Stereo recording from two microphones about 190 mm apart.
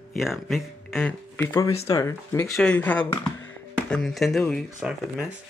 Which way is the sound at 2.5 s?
5° left (ahead or behind).